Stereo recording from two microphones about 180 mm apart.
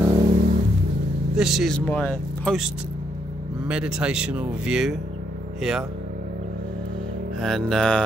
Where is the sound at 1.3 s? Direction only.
Centre (ahead or behind).